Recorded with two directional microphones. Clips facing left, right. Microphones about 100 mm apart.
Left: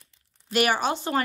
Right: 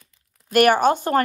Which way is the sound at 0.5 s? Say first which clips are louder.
Right 8 dB; 50° right (ahead or behind).